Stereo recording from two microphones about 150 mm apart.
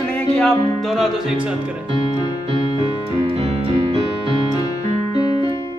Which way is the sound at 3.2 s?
45° right (ahead or behind).